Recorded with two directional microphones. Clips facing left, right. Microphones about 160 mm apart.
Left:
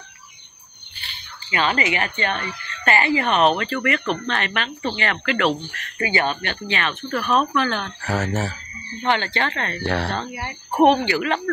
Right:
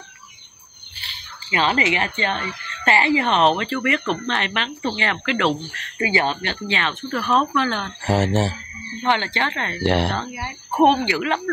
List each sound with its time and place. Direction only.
1.5 s speech: 25° right (ahead or behind)